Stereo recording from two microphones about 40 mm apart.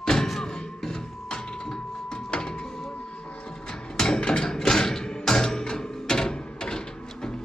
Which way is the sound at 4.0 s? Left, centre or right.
Centre.